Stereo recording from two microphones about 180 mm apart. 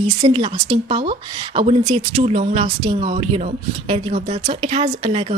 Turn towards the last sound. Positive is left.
turn(degrees=-35)  # may be behind; listen again after turning